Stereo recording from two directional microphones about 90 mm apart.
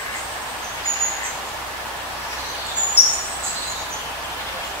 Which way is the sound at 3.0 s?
25° left (ahead or behind).